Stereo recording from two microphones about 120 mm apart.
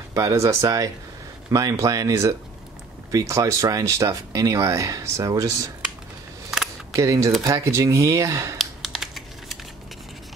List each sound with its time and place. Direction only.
0.1 s speech: 25° right (ahead or behind)
7.0 s speech: 25° right (ahead or behind)
8.5 s typing: 5° right (ahead or behind)